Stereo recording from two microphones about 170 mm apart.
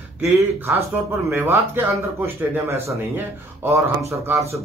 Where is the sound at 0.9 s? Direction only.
15° right (ahead or behind).